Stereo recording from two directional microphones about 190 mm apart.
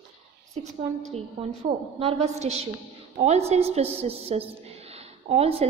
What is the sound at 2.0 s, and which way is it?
A woman's voice, 35° right (ahead or behind).